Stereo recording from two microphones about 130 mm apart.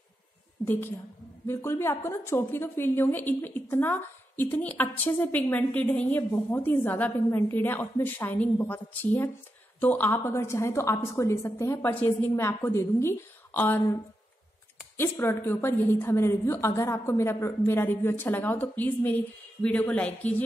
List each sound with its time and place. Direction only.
0.7 s a woman's voice: 15° left (ahead or behind)
15.0 s a woman's voice: 20° left (ahead or behind)